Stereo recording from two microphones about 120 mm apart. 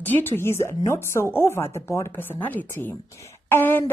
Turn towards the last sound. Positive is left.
turn(degrees=15)  # may be behind; listen again after turning